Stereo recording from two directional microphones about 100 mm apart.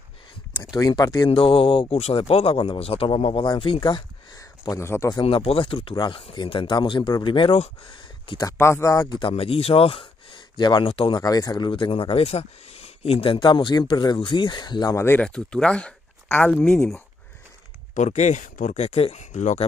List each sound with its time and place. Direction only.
0.7 s speech: 40° left (ahead or behind)
1.3 s a man's voice: 65° left (ahead or behind)
4.4 s speech: 30° left (ahead or behind)
5.2 s speech: 80° left
8.4 s speech: 30° left (ahead or behind)
9.2 s speech: 75° left (ahead or behind); by 10.9 s 50° left (ahead or behind)
10.9 s speech: 60° left (ahead or behind)
11.1 s speech: 40° left (ahead or behind); by 13.4 s 80° left
13.4 s speech: 50° left (ahead or behind)
15.0 s speech: 25° left (ahead or behind)
15.2 s speech: 10° left (ahead or behind)
16.3 s speech: 20° left (ahead or behind)
16.5 s speech: 5° left (ahead or behind)
18.8 s speech: 85° left